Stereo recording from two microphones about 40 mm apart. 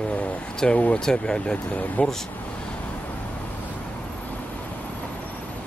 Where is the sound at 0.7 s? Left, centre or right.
Left.